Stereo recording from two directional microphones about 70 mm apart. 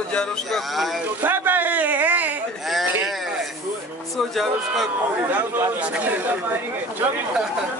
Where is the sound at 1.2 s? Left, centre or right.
Right.